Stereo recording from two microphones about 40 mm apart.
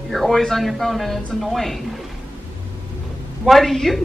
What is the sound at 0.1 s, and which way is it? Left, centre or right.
A woman's voice, centre.